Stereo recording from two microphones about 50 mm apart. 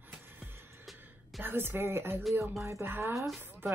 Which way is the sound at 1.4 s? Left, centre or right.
Right.